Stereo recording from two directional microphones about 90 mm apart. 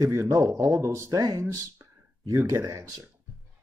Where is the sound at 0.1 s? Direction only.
30° right (ahead or behind).